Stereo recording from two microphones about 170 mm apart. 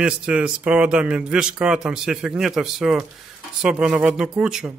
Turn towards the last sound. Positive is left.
turn(degrees=-5)  # may be behind; listen again after turning